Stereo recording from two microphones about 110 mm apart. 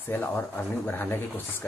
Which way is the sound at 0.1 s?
15° left (ahead or behind).